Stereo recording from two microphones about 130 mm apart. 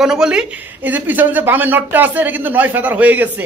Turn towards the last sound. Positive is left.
turn(degrees=-10)  # may be behind; listen again after turning